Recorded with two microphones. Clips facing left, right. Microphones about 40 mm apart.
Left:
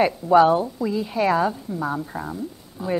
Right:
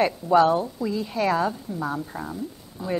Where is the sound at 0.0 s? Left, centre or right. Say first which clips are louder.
Left 3 dB; centre.